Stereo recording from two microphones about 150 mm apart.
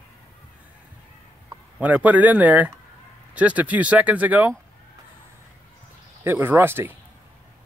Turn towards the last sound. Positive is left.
turn(degrees=-15)  # may be behind; listen again after turning